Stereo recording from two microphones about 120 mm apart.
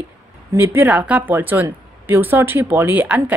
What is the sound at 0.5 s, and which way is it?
Speech, 15° right (ahead or behind).